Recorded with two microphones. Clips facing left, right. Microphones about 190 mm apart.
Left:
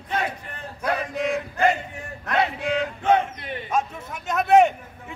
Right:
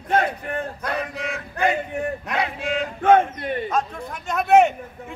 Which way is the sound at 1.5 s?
60° right (ahead or behind).